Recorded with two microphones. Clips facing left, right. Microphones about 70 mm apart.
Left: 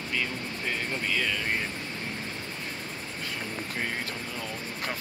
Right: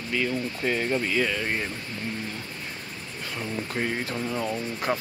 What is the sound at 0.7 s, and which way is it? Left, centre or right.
Speech, centre.